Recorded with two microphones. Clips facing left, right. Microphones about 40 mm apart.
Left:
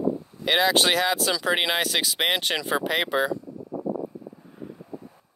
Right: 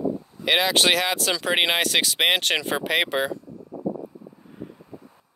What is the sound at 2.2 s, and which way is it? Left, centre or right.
Speech, centre.